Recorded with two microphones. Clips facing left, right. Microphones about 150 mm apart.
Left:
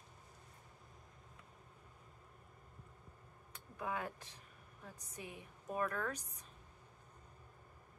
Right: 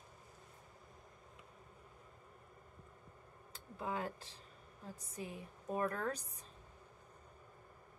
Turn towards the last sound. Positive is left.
turn(degrees=-30)  # may be behind; listen again after turning